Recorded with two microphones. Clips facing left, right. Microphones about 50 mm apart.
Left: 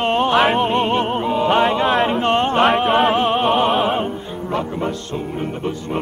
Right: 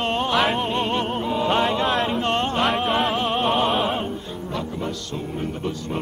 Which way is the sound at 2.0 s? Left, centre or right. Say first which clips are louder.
Left 5 dB; left.